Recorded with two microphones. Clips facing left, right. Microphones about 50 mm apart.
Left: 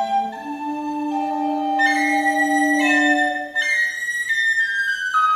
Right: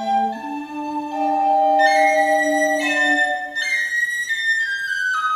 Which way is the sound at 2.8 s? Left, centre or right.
Centre.